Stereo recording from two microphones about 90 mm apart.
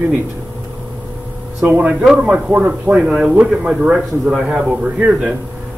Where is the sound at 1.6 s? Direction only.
20° right (ahead or behind).